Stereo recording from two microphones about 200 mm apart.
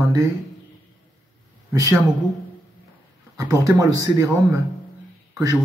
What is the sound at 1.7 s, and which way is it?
Speech, 15° right (ahead or behind).